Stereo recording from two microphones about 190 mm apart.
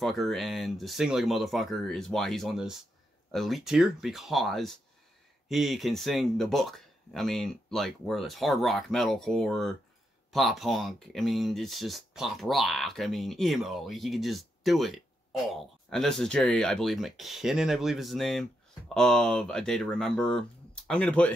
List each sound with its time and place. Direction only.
0.0 s speech: centre (ahead or behind)